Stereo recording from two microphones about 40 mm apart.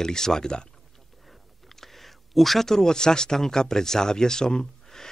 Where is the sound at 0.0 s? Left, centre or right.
Centre.